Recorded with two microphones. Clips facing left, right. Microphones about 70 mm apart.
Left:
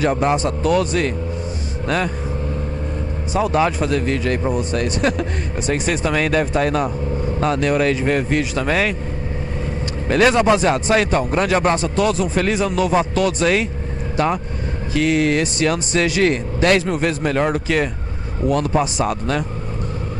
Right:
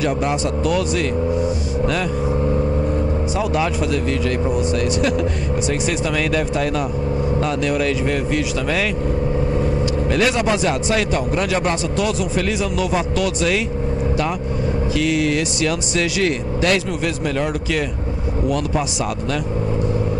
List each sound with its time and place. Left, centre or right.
0.0 s speech: left
3.3 s speech: left
10.1 s speech: left
15.0 s speech: left